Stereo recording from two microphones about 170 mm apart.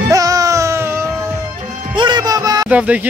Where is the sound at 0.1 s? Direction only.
20° right (ahead or behind).